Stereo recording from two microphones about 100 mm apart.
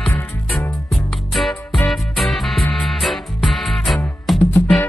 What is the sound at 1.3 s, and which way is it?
Music, centre (ahead or behind).